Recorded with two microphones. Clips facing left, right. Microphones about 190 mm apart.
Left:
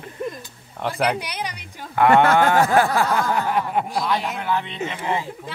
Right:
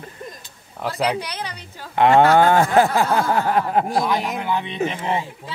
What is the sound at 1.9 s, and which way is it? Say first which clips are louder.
Speech: right 1 dB; 25° right (ahead or behind).